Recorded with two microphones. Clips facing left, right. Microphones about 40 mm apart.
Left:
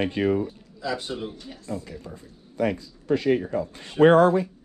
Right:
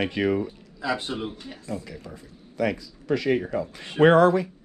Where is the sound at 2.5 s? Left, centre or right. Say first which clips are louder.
Left 1 dB; right.